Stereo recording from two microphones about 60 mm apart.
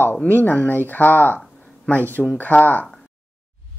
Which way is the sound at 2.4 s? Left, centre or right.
Left.